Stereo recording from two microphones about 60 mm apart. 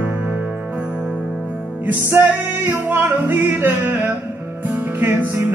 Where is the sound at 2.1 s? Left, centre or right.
Right.